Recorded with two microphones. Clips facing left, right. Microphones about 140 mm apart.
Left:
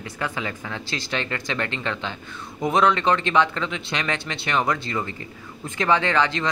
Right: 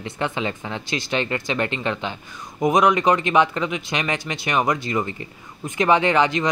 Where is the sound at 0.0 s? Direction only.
25° right (ahead or behind).